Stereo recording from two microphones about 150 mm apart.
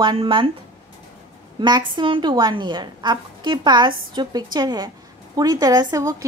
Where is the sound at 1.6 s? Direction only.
30° right (ahead or behind).